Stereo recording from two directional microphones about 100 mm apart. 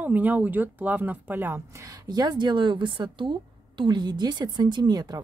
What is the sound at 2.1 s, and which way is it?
A woman's voice, 40° right (ahead or behind).